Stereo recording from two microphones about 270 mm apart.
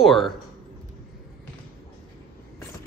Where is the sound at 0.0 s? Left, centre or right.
Centre.